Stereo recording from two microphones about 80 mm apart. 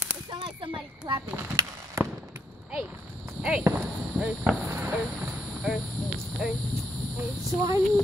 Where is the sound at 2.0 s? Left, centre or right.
Right.